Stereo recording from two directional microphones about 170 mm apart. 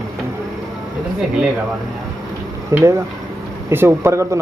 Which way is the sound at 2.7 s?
15° right (ahead or behind).